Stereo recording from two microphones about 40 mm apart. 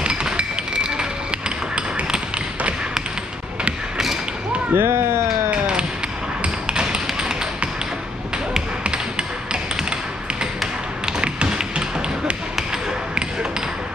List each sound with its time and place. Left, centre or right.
0.0 s chink: right
4.7 s speech: right
5.5 s a sound: right
6.7 s tap: right
11.4 s music: centre